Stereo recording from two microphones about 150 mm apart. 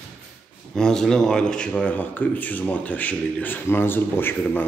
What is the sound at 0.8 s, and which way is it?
Speech, 5° left (ahead or behind).